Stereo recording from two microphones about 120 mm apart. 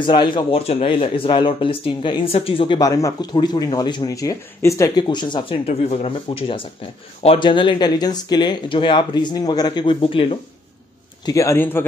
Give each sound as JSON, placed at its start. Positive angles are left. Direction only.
{"t": 0.0, "sound": "speech", "side_deg": 40}
{"t": 0.7, "sound": "speech", "side_deg": 50}
{"t": 2.8, "sound": "speech", "side_deg": 30}
{"t": 11.2, "sound": "a man's voice", "side_deg": 25}